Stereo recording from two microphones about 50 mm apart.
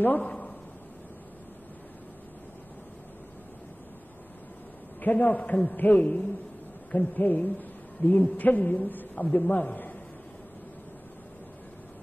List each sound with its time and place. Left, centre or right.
0.0 s a man's voice: left
5.0 s a man's voice: left